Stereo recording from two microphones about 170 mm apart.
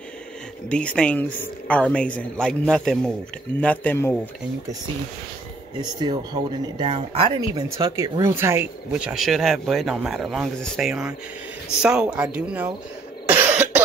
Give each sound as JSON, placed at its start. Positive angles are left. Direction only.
{"t": 0.7, "sound": "a woman's voice", "side_deg": 5}
{"t": 5.8, "sound": "speech", "side_deg": -25}
{"t": 9.1, "sound": "a woman's voice", "side_deg": 0}
{"t": 13.3, "sound": "cough", "side_deg": -10}